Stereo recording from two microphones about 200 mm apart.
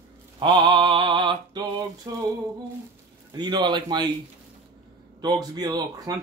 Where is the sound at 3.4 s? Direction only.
20° right (ahead or behind).